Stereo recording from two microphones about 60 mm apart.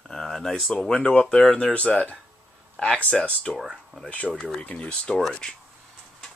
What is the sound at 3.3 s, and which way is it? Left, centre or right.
Speech, centre.